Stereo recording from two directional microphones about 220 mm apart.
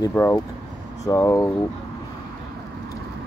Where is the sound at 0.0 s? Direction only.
10° left (ahead or behind).